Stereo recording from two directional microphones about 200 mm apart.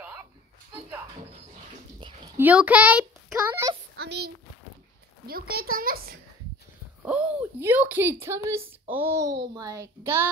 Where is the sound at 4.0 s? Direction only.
55° right (ahead or behind).